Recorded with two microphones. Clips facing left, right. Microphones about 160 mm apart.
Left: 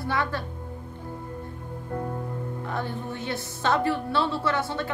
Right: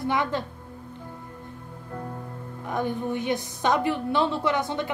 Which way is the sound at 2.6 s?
15° right (ahead or behind).